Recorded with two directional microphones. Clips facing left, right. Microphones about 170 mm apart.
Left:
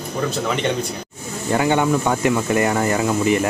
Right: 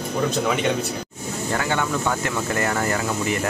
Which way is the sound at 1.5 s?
20° left (ahead or behind).